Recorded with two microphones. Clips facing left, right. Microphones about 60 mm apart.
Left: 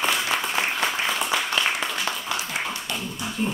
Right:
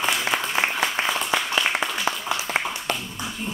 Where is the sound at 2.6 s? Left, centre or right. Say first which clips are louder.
Right 5 dB; right.